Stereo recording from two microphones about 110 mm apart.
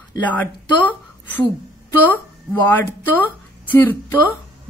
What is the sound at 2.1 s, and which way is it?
A woman's voice, 15° left (ahead or behind).